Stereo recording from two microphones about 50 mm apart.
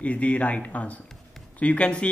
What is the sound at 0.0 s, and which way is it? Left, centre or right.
A man's voice, left.